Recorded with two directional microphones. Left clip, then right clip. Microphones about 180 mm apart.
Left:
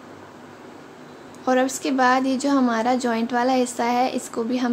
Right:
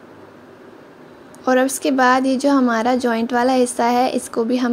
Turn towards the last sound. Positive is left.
turn(degrees=-30)  # may be behind; listen again after turning